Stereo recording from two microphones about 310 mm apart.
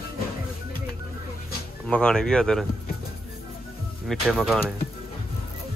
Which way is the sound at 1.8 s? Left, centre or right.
Centre.